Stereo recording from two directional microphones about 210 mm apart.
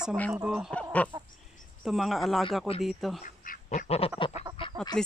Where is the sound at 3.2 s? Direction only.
40° left (ahead or behind).